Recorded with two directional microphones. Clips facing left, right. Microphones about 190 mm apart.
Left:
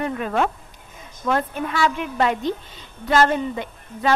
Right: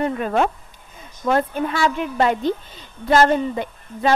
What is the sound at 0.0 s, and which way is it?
A woman's voice, 35° right (ahead or behind).